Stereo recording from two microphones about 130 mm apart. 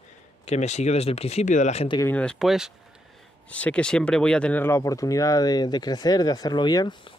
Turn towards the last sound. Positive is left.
turn(degrees=35)  # may be behind; listen again after turning